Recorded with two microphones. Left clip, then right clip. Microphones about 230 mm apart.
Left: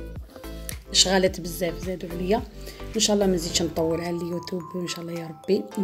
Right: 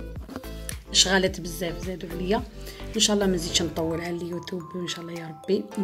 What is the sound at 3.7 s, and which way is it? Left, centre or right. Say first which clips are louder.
Speech: left 3 dB; centre.